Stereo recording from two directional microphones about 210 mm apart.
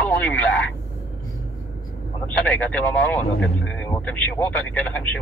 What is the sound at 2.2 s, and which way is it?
Speech, 5° left (ahead or behind).